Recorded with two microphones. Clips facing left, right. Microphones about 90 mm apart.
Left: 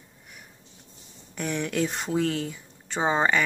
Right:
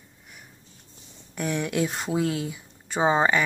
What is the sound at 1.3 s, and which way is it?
Speech, 5° right (ahead or behind).